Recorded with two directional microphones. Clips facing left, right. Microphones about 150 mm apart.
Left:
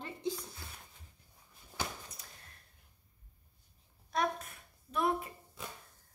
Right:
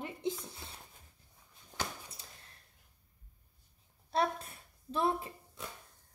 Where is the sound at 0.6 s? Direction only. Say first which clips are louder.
Right 1 dB; 25° right (ahead or behind).